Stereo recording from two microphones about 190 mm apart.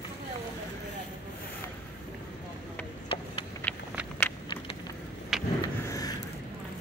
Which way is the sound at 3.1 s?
30° left (ahead or behind).